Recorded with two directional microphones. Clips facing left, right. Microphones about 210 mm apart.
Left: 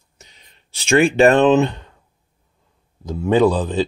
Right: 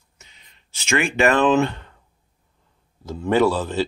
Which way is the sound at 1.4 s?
20° left (ahead or behind).